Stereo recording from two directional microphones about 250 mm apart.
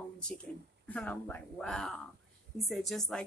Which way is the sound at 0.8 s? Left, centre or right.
Centre.